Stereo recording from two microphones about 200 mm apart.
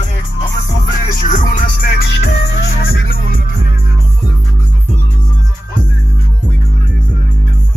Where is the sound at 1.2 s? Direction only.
40° left (ahead or behind).